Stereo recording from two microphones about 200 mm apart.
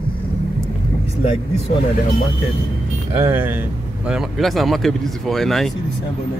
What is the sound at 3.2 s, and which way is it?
Speech, 10° right (ahead or behind).